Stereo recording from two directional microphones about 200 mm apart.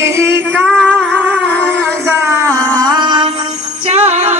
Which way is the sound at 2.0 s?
15° right (ahead or behind).